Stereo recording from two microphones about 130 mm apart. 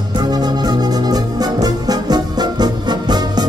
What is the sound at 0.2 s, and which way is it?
Music, 30° right (ahead or behind).